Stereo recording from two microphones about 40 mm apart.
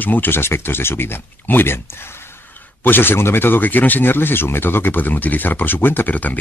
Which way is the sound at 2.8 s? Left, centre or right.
Left.